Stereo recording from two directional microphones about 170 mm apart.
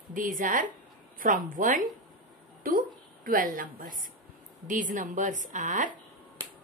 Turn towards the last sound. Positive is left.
turn(degrees=-50)  # may be behind; listen again after turning